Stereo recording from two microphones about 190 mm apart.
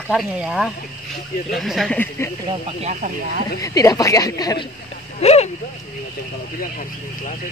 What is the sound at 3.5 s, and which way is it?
Speech, 15° left (ahead or behind).